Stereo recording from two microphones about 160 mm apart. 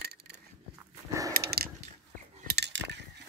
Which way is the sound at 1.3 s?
75° right (ahead or behind).